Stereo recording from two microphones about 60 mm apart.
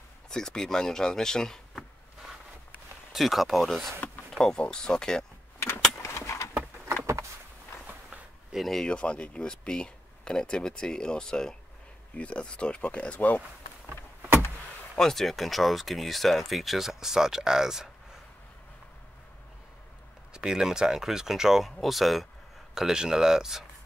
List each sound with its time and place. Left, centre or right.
0.3 s speech: centre
3.1 s speech: centre
5.6 s vehicle: left
8.5 s speech: centre
8.8 s speech: centre
15.0 s speech: centre
20.3 s speech: centre